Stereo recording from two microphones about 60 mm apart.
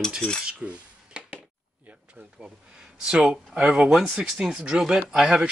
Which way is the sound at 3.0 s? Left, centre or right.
Centre.